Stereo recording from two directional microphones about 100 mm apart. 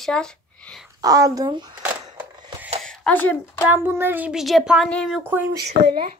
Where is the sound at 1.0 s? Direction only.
40° right (ahead or behind).